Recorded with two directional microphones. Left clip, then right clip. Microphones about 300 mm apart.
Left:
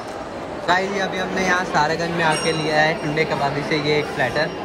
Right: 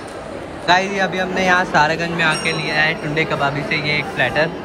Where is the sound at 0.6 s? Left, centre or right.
Centre.